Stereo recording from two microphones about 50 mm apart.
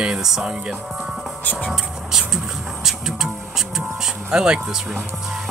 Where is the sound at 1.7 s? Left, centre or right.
Centre.